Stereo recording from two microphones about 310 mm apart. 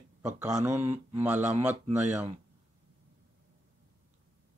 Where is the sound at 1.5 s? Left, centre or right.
Right.